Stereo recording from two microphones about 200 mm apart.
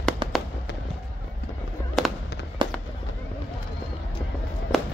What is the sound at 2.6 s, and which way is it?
Fireworks, 25° right (ahead or behind).